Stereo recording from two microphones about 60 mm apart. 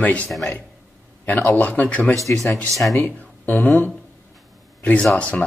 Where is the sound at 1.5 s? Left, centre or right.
Left.